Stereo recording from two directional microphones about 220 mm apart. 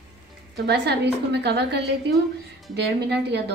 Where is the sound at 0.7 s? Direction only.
50° right (ahead or behind).